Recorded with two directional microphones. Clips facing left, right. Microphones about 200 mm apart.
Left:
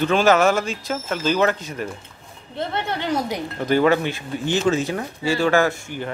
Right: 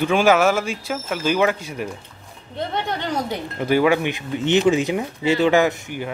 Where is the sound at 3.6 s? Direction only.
10° right (ahead or behind).